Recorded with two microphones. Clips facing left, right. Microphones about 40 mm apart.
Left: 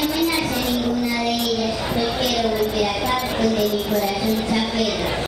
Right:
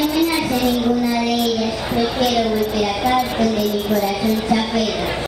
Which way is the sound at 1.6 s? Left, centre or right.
Centre.